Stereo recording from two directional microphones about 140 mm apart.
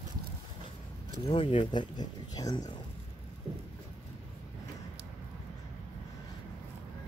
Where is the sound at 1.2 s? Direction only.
40° left (ahead or behind).